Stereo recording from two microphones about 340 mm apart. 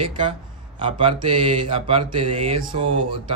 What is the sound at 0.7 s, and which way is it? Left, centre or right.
Speech, centre.